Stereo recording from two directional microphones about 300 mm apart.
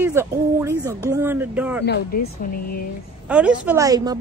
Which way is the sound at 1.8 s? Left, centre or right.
Left.